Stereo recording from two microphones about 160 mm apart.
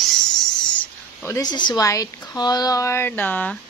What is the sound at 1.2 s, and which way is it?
A woman's voice, 20° left (ahead or behind).